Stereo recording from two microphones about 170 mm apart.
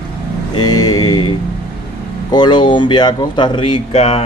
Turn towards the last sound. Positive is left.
turn(degrees=35)  # may be behind; listen again after turning